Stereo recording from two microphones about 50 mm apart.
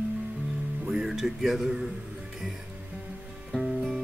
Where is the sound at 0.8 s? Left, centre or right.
Centre.